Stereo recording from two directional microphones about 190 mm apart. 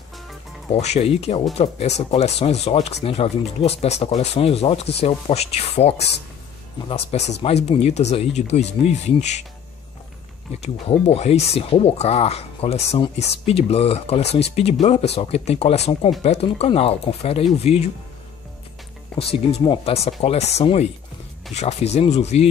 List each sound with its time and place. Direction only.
0.7 s speech: 35° left (ahead or behind)
10.6 s speech: 35° left (ahead or behind)
19.1 s speech: 30° left (ahead or behind)